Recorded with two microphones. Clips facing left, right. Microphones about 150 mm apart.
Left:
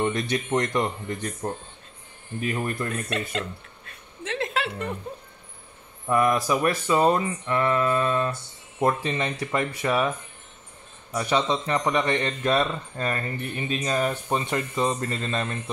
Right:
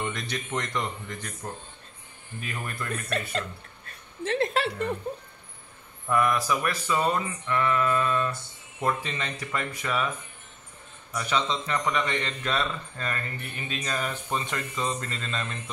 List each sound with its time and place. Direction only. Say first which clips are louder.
0.0 s speech: left 7 dB; 30° left (ahead or behind)
2.9 s a sound: left 2 dB; 40° right (ahead or behind)
6.0 s speech: left 3 dB; 30° left (ahead or behind)
11.1 s speech: left 4 dB; 35° left (ahead or behind)